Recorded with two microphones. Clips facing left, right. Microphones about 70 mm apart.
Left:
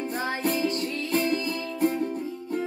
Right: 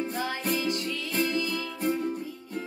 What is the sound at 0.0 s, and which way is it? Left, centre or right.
Music, left.